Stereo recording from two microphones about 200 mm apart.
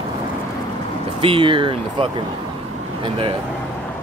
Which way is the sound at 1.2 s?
25° right (ahead or behind).